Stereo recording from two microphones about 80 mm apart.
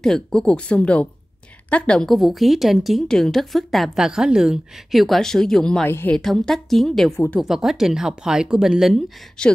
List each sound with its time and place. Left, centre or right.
0.0 s speech: centre
2.1 s a woman's voice: centre
5.9 s a woman's voice: left
6.1 s a woman's voice: centre
9.4 s speech: centre